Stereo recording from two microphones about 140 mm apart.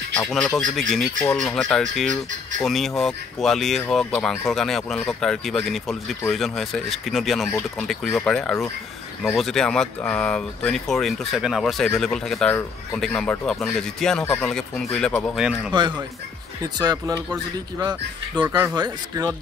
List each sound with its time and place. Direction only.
0.2 s speech: centre (ahead or behind)
15.7 s speech: 35° right (ahead or behind)